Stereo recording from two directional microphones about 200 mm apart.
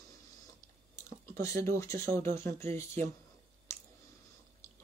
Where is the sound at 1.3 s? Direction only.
15° left (ahead or behind).